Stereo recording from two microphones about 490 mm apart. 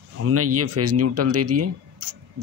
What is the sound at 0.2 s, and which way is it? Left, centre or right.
Speech, right.